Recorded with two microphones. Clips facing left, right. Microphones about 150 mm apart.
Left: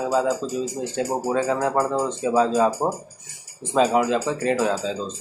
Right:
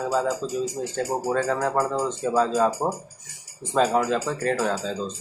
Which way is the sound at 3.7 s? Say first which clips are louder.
Left 2 dB; 5° left (ahead or behind).